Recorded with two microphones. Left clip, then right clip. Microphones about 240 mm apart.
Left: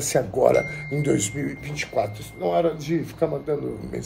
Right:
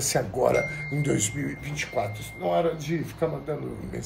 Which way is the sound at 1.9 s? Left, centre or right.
Left.